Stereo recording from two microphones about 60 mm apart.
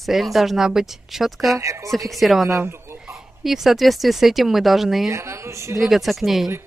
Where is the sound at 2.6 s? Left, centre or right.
Right.